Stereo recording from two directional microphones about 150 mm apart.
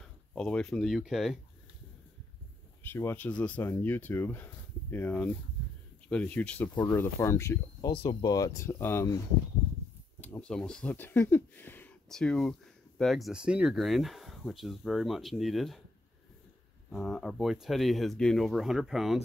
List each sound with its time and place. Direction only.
0.0 s speech: 5° left (ahead or behind)
2.9 s speech: 15° left (ahead or behind)
7.9 s speech: 35° left (ahead or behind); by 9.1 s 15° left (ahead or behind)
10.2 s speech: 10° left (ahead or behind)
16.9 s speech: centre (ahead or behind)